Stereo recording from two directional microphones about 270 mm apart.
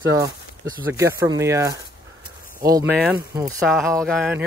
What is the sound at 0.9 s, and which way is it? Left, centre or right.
Speech, centre.